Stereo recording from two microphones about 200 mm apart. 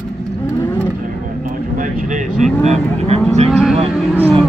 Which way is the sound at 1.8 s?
40° right (ahead or behind).